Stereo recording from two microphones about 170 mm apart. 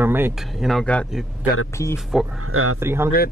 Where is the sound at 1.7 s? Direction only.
15° left (ahead or behind).